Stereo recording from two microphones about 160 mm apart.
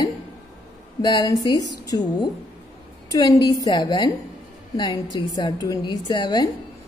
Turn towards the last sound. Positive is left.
turn(degrees=25)  # may be behind; listen again after turning